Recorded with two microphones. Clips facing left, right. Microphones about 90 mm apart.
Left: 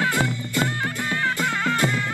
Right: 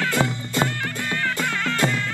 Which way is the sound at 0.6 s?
20° left (ahead or behind).